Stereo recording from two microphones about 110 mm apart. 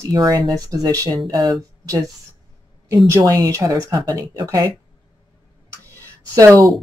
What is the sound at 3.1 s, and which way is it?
Speech, 30° right (ahead or behind).